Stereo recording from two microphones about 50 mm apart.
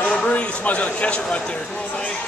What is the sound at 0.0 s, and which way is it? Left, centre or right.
A man's voice, left.